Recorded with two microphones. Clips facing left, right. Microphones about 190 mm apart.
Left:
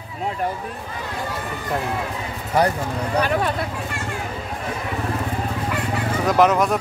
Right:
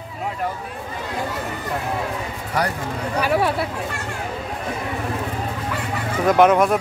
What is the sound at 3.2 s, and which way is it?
Speech, 5° right (ahead or behind).